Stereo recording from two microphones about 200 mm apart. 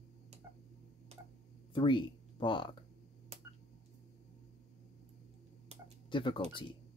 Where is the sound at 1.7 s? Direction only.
25° left (ahead or behind).